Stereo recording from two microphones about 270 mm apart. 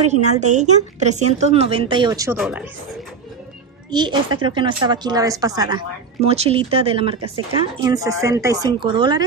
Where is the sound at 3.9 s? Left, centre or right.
Centre.